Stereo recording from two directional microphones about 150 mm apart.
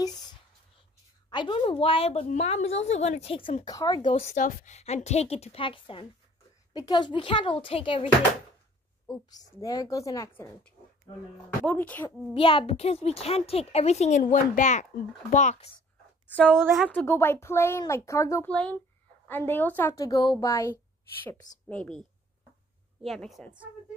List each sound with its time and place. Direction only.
1.3 s a woman's voice: 35° left (ahead or behind)
9.3 s speech: 25° left (ahead or behind)
11.6 s speech: 10° left (ahead or behind)
12.4 s a child's voice: 35° left (ahead or behind)
16.3 s a woman's voice: 5° left (ahead or behind)
18.5 s speech: 5° left (ahead or behind)
19.9 s speech: 25° left (ahead or behind); by 22.0 s 5° left (ahead or behind)
23.0 s a woman's voice: centre (ahead or behind)